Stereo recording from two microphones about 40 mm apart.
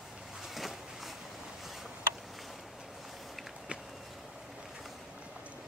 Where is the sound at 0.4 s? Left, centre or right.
Centre.